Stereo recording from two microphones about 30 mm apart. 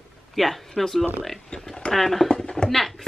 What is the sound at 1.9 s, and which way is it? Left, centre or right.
Speech, centre.